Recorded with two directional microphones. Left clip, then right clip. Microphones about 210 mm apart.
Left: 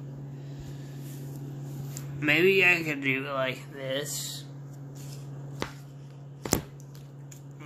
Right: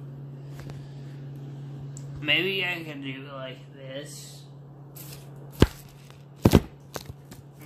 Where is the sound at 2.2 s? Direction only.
15° left (ahead or behind); by 4.0 s 50° left (ahead or behind).